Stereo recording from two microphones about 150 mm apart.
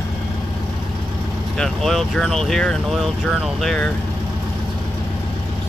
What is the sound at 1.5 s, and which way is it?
Speech, centre (ahead or behind).